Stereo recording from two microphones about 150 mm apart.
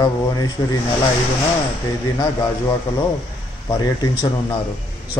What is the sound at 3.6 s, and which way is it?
Speech, 25° left (ahead or behind).